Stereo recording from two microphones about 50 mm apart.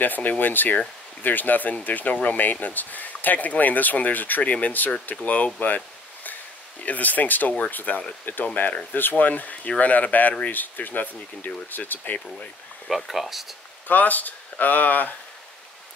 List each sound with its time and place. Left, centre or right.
0.0 s speech: left
6.8 s speech: left
12.8 s speech: centre
13.8 s speech: left